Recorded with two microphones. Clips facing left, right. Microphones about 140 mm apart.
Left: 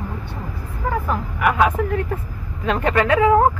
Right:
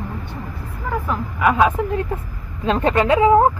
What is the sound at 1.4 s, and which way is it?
Speech, 25° right (ahead or behind).